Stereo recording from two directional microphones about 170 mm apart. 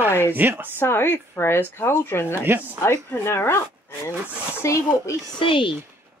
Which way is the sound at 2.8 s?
15° left (ahead or behind).